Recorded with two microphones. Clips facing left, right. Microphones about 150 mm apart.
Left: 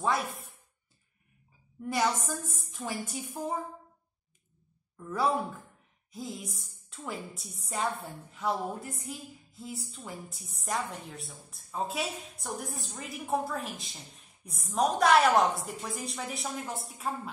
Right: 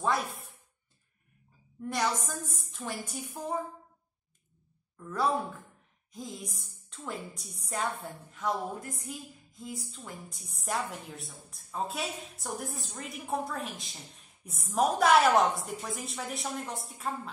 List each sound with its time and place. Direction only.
0.0 s a woman's voice: centre (ahead or behind)
1.8 s a woman's voice: 5° left (ahead or behind)
4.9 s a woman's voice: 10° left (ahead or behind)